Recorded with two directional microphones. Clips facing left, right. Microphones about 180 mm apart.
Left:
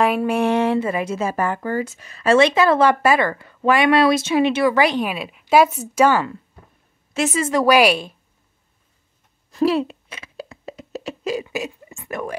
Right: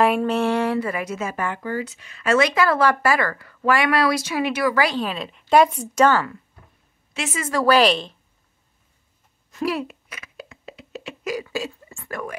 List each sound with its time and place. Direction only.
0.0 s speech: centre (ahead or behind)
0.3 s speech: 15° left (ahead or behind)
7.2 s a woman's voice: 40° left (ahead or behind)
7.4 s a woman's voice: 15° left (ahead or behind)
9.5 s a sound: 30° left (ahead or behind)
11.2 s speech: 20° left (ahead or behind)